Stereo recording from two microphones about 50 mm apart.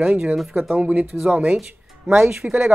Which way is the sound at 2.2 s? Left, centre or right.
Centre.